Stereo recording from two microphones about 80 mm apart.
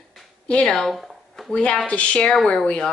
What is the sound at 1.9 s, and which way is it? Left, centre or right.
Speech, centre.